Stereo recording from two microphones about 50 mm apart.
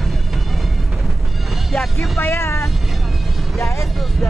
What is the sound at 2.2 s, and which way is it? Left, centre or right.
Vehicle, left.